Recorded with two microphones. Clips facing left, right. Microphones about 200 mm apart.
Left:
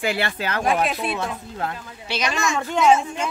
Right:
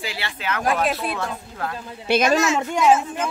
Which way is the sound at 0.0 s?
55° left (ahead or behind).